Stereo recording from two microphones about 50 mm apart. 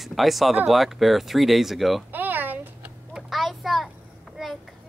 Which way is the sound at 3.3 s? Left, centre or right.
Centre.